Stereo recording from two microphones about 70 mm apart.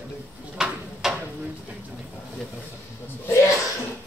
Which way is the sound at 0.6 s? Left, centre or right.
Centre.